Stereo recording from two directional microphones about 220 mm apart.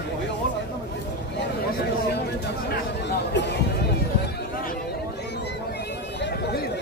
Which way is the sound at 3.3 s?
50° left (ahead or behind).